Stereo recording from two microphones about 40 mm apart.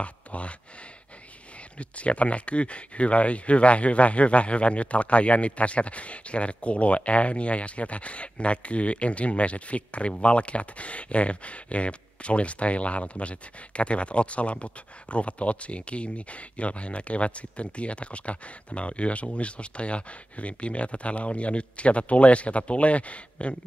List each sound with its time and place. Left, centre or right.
0.0 s speech: left
1.8 s speech: left